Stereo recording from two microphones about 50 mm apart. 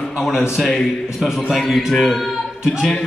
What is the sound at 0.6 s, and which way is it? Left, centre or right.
A man's voice, centre.